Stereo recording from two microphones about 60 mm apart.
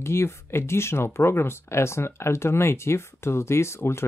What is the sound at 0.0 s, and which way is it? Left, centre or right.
Speech, left.